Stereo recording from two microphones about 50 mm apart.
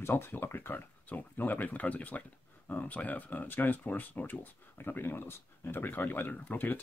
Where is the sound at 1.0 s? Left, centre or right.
Left.